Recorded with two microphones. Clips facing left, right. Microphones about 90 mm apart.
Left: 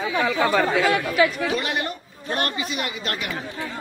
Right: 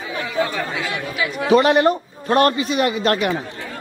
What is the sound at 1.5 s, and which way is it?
A man's voice, 50° right (ahead or behind).